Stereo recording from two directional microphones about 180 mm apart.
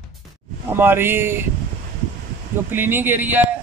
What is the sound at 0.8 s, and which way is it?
Speech, 10° right (ahead or behind).